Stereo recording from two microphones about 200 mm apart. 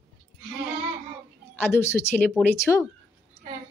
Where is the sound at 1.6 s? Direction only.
15° left (ahead or behind).